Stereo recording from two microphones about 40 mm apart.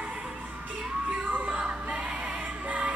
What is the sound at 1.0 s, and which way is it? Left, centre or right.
Music, right.